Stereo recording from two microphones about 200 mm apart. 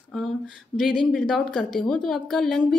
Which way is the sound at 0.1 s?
Centre (ahead or behind).